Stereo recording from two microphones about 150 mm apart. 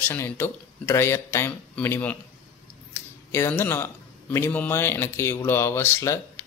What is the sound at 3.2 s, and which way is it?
A man's voice, 15° left (ahead or behind).